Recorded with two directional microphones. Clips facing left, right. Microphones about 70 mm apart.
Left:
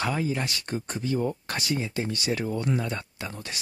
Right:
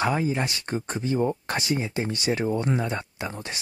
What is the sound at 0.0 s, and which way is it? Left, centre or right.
Speech, right.